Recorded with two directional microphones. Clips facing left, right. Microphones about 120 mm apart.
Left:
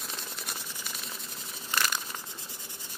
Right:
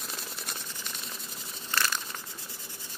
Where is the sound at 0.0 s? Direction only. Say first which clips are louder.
Even; centre (ahead or behind).